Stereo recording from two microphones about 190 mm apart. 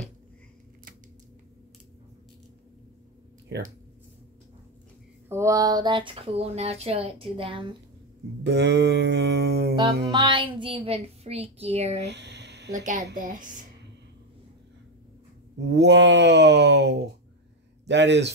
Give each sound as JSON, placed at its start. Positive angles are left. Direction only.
{"t": 5.3, "sound": "speech", "side_deg": -15}
{"t": 8.5, "sound": "speech", "side_deg": -65}
{"t": 10.1, "sound": "a woman's voice", "side_deg": -25}
{"t": 12.1, "sound": "a sound", "side_deg": -65}
{"t": 12.7, "sound": "a woman's voice", "side_deg": -40}
{"t": 15.6, "sound": "speech", "side_deg": -65}